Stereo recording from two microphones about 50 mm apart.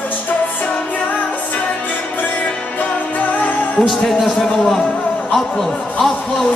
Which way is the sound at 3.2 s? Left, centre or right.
Left.